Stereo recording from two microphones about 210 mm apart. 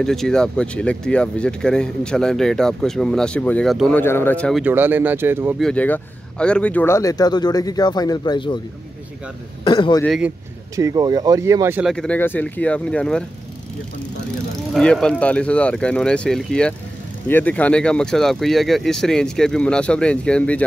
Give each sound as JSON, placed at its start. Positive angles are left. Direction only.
{"t": 0.0, "sound": "speech", "side_deg": 0}
{"t": 4.6, "sound": "speech", "side_deg": -10}
{"t": 5.6, "sound": "speech", "side_deg": 5}
{"t": 9.7, "sound": "a man's voice", "side_deg": 20}
{"t": 10.0, "sound": "speech", "side_deg": 0}
{"t": 10.8, "sound": "speech", "side_deg": -15}
{"t": 11.8, "sound": "speech", "side_deg": 0}
{"t": 14.7, "sound": "speech", "side_deg": 5}